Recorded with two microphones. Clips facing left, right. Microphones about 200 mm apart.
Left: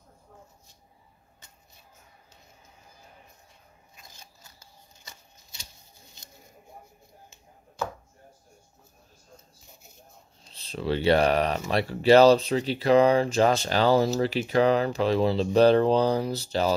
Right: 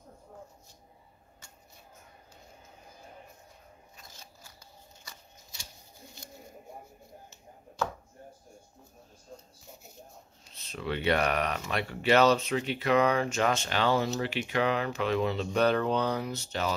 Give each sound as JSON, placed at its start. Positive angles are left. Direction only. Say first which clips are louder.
{"t": 10.5, "sound": "speech", "louder": "left 6 dB", "side_deg": 30}